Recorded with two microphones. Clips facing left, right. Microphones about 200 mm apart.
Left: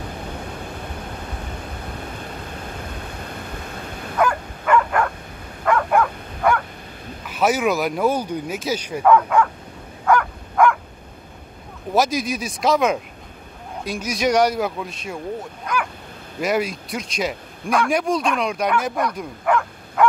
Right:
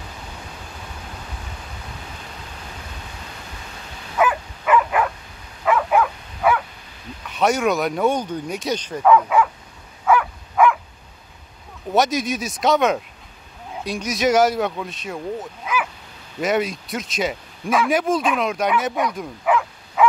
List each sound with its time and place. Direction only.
3.2 s a sound: 55° left (ahead or behind)
4.2 s dog: 5° right (ahead or behind)
5.7 s bow-wow: 5° right (ahead or behind)
7.2 s speech: 5° left (ahead or behind)
9.0 s speech: 5° right (ahead or behind)
10.0 s dog: 5° right (ahead or behind)
11.9 s speech: centre (ahead or behind)
15.6 s dog: 5° right (ahead or behind)
16.3 s a man's voice: centre (ahead or behind)